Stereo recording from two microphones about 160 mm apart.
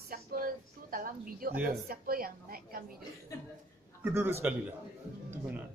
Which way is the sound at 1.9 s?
65° right (ahead or behind).